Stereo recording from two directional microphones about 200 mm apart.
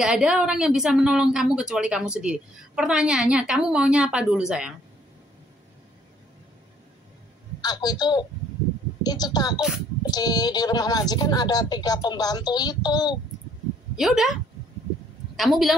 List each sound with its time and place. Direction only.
0.0 s a woman's voice: 5° right (ahead or behind)
7.6 s speech: 20° left (ahead or behind)
13.9 s a woman's voice: centre (ahead or behind)